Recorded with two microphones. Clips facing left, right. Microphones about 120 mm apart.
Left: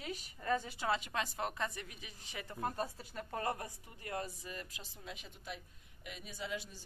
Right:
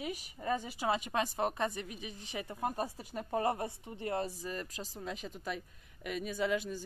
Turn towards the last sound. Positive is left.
turn(degrees=-55)  # may be behind; listen again after turning